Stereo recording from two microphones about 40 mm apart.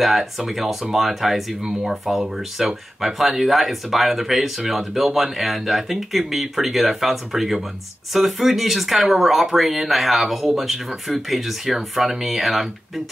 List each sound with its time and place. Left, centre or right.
0.0 s speech: centre